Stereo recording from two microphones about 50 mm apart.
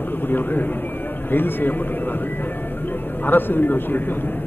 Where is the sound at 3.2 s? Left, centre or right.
Left.